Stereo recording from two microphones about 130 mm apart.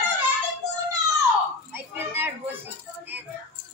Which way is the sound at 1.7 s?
15° right (ahead or behind).